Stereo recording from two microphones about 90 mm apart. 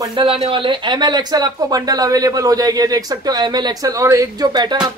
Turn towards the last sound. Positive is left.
turn(degrees=-50)  # may be behind; listen again after turning